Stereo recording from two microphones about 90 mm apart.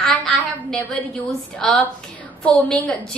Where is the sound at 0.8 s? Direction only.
15° left (ahead or behind).